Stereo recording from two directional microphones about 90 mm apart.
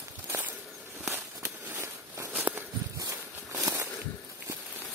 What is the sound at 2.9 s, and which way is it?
Walk, 40° right (ahead or behind).